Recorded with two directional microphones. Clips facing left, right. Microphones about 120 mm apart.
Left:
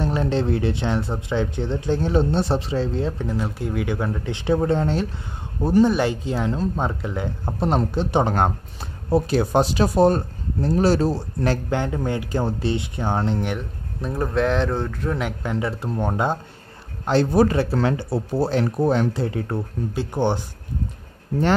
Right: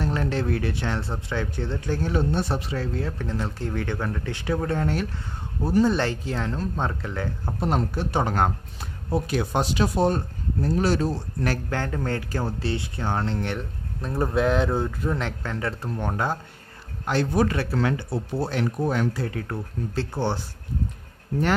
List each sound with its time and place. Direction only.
0.0 s speech: 20° left (ahead or behind)
3.3 s speech: 10° left (ahead or behind)
9.1 s speech: 35° left (ahead or behind); by 13.6 s 15° left (ahead or behind)
13.6 s speech: centre (ahead or behind)
15.1 s speech: 15° left (ahead or behind)
17.0 s speech: 30° left (ahead or behind)
19.9 s speech: 15° left (ahead or behind)